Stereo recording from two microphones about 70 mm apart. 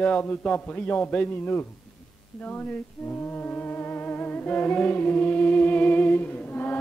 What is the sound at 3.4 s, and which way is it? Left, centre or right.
Music, left.